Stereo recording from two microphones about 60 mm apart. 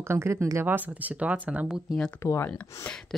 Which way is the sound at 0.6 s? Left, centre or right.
Right.